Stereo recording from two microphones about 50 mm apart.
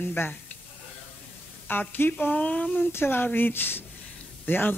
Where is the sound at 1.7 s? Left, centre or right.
Left.